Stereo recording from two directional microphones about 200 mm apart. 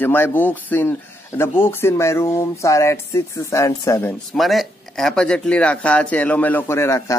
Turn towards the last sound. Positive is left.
turn(degrees=15)  # may be behind; listen again after turning